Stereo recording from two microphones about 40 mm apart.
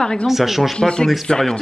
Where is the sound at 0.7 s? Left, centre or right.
Centre.